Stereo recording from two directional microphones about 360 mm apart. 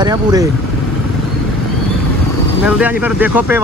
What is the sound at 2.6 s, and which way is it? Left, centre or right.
Speech, centre.